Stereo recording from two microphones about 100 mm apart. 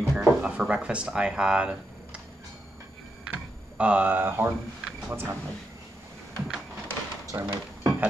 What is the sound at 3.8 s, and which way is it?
Speech, 15° right (ahead or behind).